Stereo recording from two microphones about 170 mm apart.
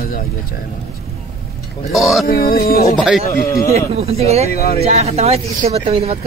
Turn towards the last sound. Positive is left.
turn(degrees=-35)  # may be behind; listen again after turning